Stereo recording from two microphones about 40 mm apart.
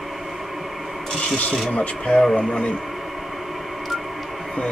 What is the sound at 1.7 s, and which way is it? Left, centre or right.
Speech, left.